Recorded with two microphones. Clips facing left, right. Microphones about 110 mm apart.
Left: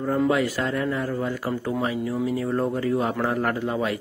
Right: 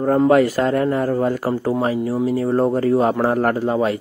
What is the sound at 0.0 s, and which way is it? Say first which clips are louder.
A man's voice: right 8 dB; 45° right (ahead or behind).